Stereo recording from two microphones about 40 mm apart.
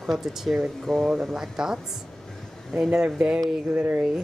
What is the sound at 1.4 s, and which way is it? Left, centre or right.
Speech, centre.